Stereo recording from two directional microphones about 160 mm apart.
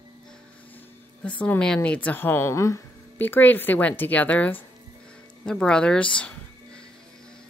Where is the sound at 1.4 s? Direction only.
5° left (ahead or behind).